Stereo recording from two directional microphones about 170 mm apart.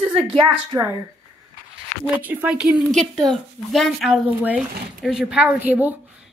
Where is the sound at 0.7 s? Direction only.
15° right (ahead or behind).